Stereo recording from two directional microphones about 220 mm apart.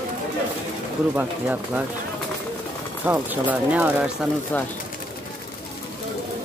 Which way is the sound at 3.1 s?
10° right (ahead or behind).